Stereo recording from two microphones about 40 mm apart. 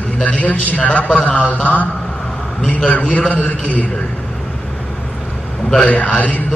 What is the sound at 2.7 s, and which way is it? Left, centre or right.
A man's voice, left.